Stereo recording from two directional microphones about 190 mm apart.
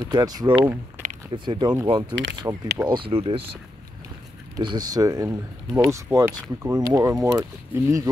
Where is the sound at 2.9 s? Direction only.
30° right (ahead or behind).